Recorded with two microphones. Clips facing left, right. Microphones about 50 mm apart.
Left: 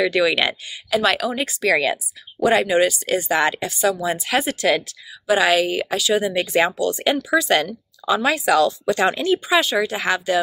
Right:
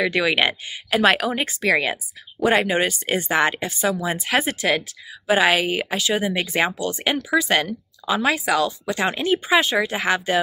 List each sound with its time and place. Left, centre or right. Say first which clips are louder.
0.0 s speech: left 1 dB; centre
0.8 s speech: right 1 dB; right
4.6 s a woman's voice: left 2 dB; centre; by 7.1 s right
7.3 s speech: even; right
9.6 s speech: even; right